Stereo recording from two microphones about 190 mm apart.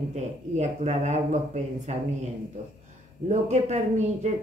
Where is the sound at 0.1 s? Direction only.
35° right (ahead or behind).